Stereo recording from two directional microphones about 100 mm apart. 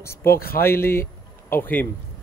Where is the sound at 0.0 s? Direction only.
25° left (ahead or behind).